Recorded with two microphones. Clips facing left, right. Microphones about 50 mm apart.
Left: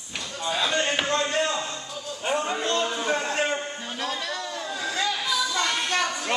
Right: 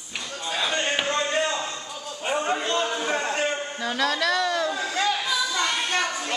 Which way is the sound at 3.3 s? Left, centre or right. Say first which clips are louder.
Even; centre.